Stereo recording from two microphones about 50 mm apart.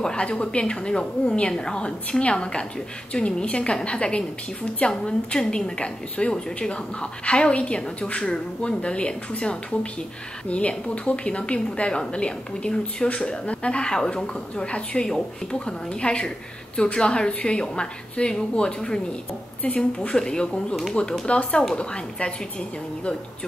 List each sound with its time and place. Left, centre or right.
0.0 s a woman's voice: centre